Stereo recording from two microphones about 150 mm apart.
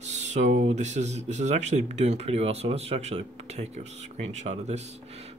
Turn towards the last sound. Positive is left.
turn(degrees=-50)  # may be behind; listen again after turning